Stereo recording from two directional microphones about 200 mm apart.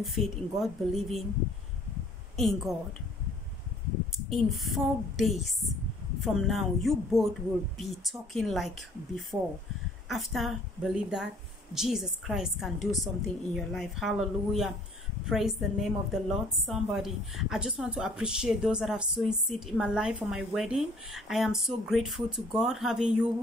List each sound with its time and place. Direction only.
0.0 s a woman's voice: centre (ahead or behind)
2.3 s a woman's voice: centre (ahead or behind)
4.3 s a woman's voice: centre (ahead or behind)